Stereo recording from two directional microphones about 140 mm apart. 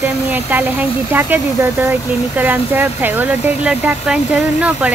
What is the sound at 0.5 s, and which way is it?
Speech, 15° right (ahead or behind).